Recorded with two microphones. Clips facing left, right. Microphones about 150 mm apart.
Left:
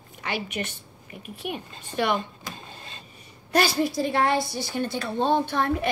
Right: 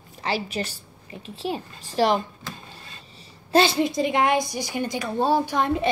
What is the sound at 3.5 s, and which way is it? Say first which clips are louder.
A woman's voice: right 3 dB; 25° right (ahead or behind).